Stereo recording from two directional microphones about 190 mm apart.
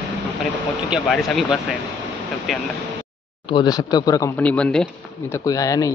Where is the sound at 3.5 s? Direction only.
20° left (ahead or behind).